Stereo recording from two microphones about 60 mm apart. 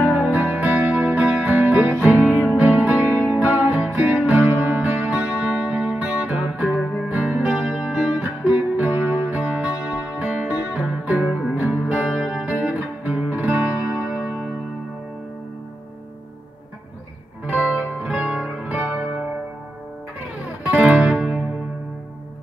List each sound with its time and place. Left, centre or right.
0.0 s music: right
9.4 s music: centre
12.2 s music: centre
12.4 s music: right
14.0 s music: centre
17.5 s music: right
20.4 s music: right